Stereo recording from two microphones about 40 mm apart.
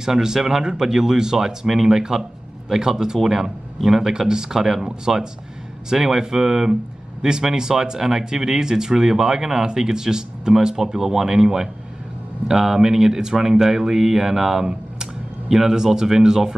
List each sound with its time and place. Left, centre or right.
0.0 s speech: centre